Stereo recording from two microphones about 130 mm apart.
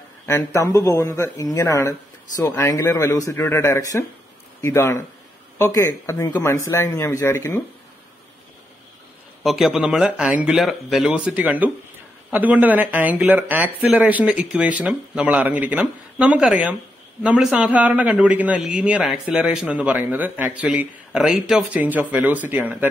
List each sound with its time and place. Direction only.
0.3 s speech: 25° left (ahead or behind)
9.4 s a man's voice: centre (ahead or behind)